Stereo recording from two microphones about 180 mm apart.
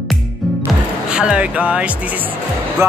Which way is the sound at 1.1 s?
5° right (ahead or behind).